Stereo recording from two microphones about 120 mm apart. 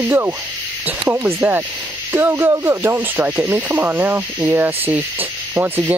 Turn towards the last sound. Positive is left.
turn(degrees=-15)  # may be behind; listen again after turning